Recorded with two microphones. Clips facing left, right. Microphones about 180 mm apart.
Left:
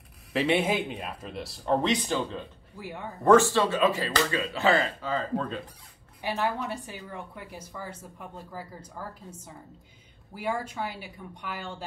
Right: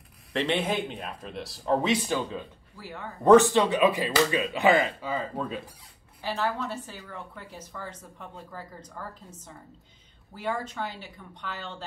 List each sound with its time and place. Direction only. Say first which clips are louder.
0.3 s a man's voice: left 2 dB; 5° left (ahead or behind)
2.8 s speech: left 2 dB; 15° left (ahead or behind)
3.3 s speech: right 2 dB; 20° right (ahead or behind)
6.2 s speech: even; 10° left (ahead or behind)